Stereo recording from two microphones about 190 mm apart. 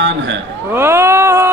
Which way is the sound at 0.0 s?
70° right (ahead or behind).